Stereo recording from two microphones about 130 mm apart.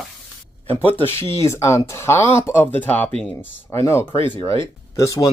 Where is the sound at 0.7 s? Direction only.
15° left (ahead or behind).